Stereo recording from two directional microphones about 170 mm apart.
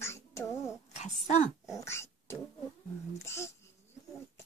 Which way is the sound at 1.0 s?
45° left (ahead or behind).